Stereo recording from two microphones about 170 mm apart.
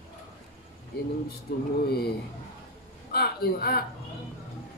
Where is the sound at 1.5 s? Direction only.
60° left (ahead or behind).